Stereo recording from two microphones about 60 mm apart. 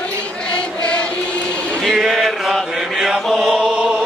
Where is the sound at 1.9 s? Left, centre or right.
Centre.